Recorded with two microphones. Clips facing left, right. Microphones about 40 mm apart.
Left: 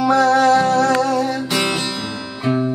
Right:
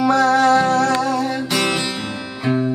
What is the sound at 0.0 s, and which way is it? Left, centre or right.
Music, centre.